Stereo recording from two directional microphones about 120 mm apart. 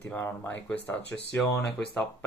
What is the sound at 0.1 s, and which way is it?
Speech, 20° left (ahead or behind).